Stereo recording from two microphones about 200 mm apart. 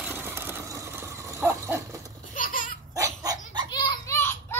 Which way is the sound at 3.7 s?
20° left (ahead or behind).